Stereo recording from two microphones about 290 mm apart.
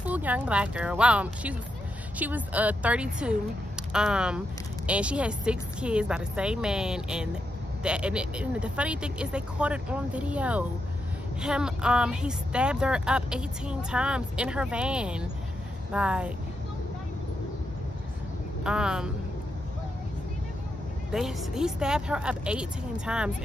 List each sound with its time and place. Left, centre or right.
0.0 s a woman's voice: centre
18.6 s a woman's voice: centre
21.1 s a woman's voice: centre